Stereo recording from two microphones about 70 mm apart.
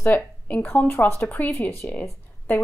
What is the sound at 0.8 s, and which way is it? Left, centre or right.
Speech, left.